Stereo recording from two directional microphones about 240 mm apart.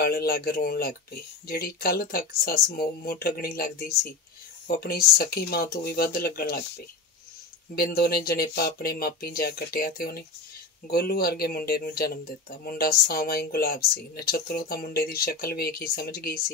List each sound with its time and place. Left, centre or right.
0.0 s speech: left
7.7 s speech: left